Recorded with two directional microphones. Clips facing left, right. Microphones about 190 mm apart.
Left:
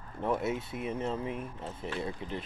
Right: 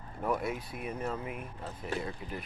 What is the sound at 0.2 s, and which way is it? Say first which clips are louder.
Speech: left 2 dB; 25° left (ahead or behind).